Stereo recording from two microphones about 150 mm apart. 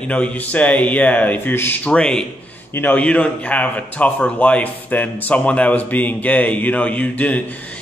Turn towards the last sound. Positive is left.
turn(degrees=10)  # may be behind; listen again after turning